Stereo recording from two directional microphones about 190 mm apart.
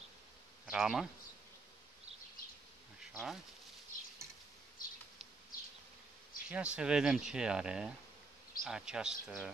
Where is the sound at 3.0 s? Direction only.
Centre (ahead or behind).